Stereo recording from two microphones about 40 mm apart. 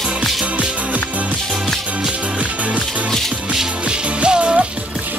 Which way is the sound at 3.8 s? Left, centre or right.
Right.